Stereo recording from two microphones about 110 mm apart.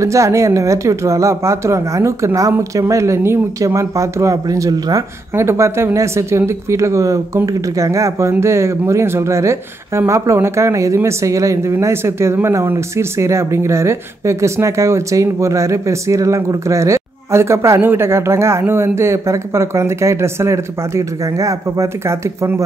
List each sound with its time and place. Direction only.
0.0 s speech: 30° right (ahead or behind)